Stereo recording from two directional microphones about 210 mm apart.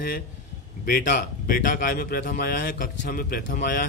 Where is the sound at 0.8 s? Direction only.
45° left (ahead or behind).